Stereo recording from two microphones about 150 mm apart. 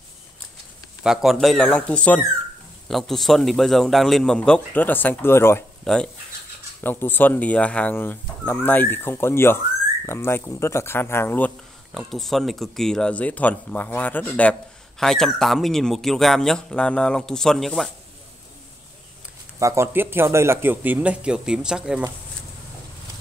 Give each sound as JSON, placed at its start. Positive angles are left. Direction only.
{"t": 1.0, "sound": "speech", "side_deg": 0}
{"t": 6.8, "sound": "speech", "side_deg": 15}
{"t": 11.9, "sound": "speech", "side_deg": 0}
{"t": 19.6, "sound": "speech", "side_deg": -20}